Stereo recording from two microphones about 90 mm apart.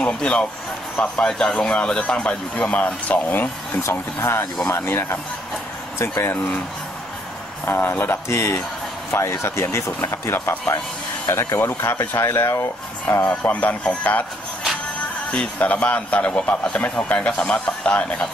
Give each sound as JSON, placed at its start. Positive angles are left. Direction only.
{"t": 0.0, "sound": "a man's voice", "side_deg": 10}
{"t": 7.6, "sound": "a man's voice", "side_deg": 25}
{"t": 15.3, "sound": "a man's voice", "side_deg": 15}